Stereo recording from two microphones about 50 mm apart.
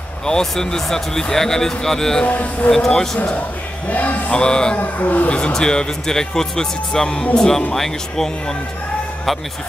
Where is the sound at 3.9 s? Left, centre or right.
Left.